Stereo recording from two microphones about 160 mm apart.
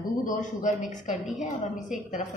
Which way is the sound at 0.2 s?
55° left (ahead or behind).